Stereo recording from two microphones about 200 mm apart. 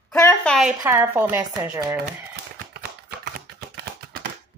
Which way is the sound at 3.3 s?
50° right (ahead or behind).